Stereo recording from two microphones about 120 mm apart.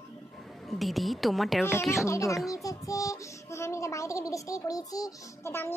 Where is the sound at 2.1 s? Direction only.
25° left (ahead or behind).